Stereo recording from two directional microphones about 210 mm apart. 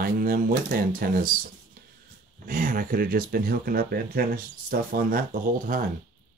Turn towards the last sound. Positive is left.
turn(degrees=-40)  # may be behind; listen again after turning